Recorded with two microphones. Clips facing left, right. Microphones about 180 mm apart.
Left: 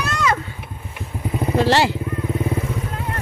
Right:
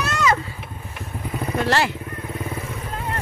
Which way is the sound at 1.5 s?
25° left (ahead or behind).